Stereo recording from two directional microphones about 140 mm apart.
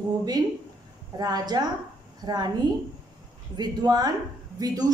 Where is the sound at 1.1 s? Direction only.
30° right (ahead or behind).